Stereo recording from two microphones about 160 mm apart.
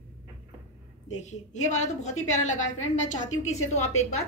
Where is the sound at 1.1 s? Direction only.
45° left (ahead or behind).